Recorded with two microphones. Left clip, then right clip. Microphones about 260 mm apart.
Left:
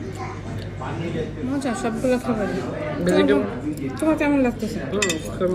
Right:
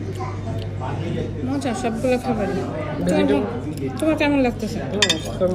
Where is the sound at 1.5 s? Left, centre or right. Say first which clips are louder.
Right 1 dB; centre.